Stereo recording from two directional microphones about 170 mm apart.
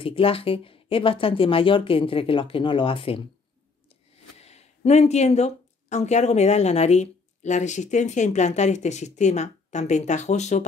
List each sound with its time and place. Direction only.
0.0 s speech: 35° left (ahead or behind)
4.4 s speech: 40° left (ahead or behind)